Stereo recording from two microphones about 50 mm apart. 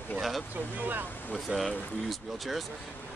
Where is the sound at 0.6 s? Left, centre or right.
Right.